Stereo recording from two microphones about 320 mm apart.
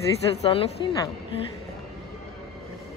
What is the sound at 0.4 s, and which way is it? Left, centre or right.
Speech, centre.